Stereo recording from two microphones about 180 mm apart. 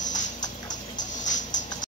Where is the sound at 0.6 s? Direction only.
45° left (ahead or behind).